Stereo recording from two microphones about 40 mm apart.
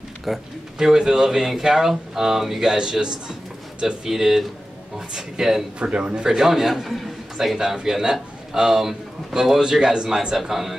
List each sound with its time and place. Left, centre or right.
0.3 s a man's voice: centre
2.6 s a man's voice: centre
5.8 s speech: right
6.3 s a man's voice: centre
10.3 s a man's voice: centre